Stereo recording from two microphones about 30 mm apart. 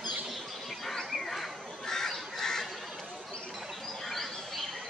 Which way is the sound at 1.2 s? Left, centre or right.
Centre.